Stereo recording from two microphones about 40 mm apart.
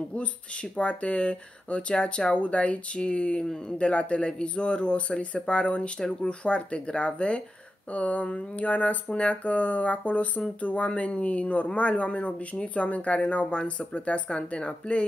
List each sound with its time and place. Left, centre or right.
0.1 s speech: left